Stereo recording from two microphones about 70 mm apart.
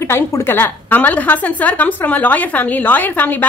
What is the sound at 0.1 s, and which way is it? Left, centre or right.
A woman's voice, left.